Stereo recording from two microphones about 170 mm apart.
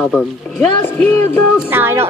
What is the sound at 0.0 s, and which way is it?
Speech, 10° left (ahead or behind).